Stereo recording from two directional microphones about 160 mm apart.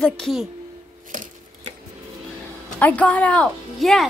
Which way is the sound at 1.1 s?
55° right (ahead or behind).